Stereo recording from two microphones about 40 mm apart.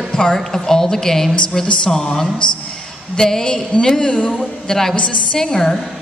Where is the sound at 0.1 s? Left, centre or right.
Left.